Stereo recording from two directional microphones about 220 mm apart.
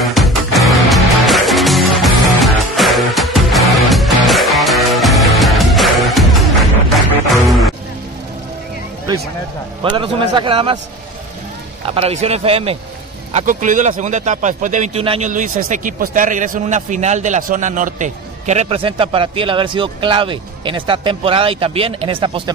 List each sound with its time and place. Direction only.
0.0 s music: centre (ahead or behind)
9.8 s a man's voice: 20° right (ahead or behind)
11.8 s a man's voice: 25° right (ahead or behind)